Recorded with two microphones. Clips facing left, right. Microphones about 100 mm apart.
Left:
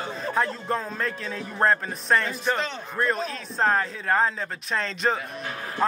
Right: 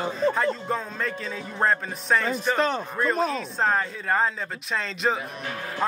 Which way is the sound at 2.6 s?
45° right (ahead or behind).